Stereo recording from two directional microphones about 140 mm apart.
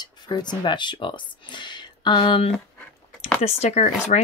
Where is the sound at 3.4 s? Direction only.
50° left (ahead or behind).